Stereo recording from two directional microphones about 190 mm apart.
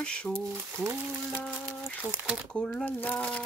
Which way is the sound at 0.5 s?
10° right (ahead or behind).